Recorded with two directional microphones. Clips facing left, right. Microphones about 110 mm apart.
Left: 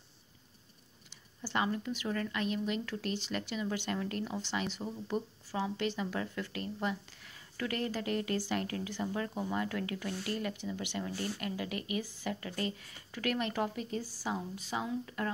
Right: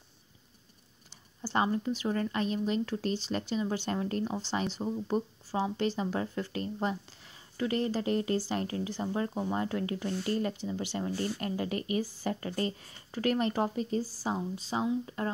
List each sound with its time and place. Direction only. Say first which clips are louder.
1.1 s speech: right 4 dB; 35° right (ahead or behind)